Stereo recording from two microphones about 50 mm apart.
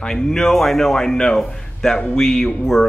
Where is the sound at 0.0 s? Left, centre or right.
Centre.